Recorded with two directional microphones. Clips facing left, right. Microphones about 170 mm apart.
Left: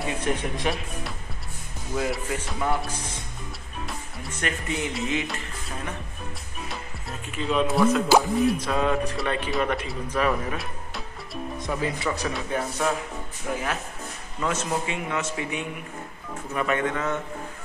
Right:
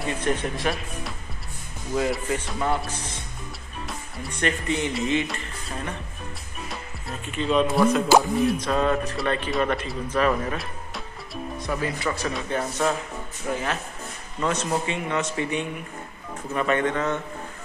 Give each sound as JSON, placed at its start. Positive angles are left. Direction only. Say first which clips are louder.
{"t": 0.0, "sound": "a man's voice", "louder": "right 1 dB", "side_deg": 10}
{"t": 3.8, "sound": "music", "louder": "right 1 dB", "side_deg": 5}
{"t": 6.7, "sound": "speech", "louder": "right 2 dB", "side_deg": 0}
{"t": 11.6, "sound": "speech", "louder": "even", "side_deg": 20}
{"t": 12.0, "sound": "a man's voice", "louder": "right 1 dB", "side_deg": 0}